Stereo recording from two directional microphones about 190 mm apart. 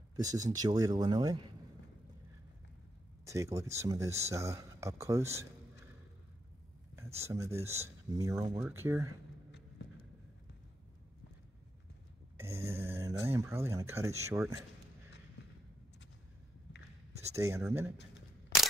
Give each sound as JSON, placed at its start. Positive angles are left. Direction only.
{"t": 0.1, "sound": "speech", "side_deg": -20}
{"t": 3.3, "sound": "speech", "side_deg": -15}
{"t": 7.2, "sound": "speech", "side_deg": -15}
{"t": 12.4, "sound": "speech", "side_deg": -15}
{"t": 17.3, "sound": "speech", "side_deg": -15}